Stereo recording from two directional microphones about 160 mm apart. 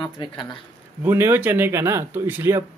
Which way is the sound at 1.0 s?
15° right (ahead or behind).